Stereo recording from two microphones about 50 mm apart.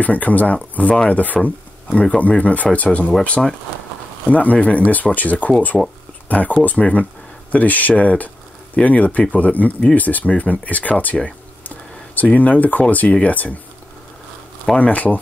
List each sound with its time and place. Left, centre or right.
0.0 s speech: left
3.4 s speech: centre
4.3 s speech: left
5.7 s speech: centre
6.2 s speech: left
12.2 s speech: left
14.7 s speech: left